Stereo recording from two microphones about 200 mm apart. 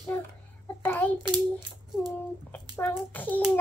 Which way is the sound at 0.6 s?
10° left (ahead or behind).